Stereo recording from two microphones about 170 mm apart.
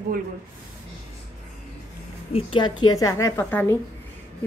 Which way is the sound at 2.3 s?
30° left (ahead or behind).